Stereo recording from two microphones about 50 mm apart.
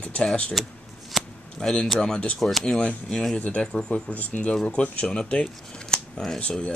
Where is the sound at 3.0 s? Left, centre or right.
Centre.